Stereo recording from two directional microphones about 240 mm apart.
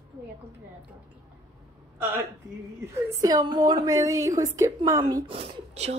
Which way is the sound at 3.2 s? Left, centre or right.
Centre.